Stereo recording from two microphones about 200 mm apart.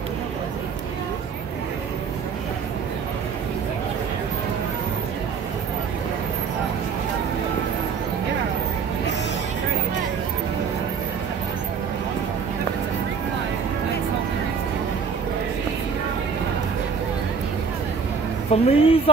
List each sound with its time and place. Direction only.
18.5 s a woman's voice: 30° left (ahead or behind)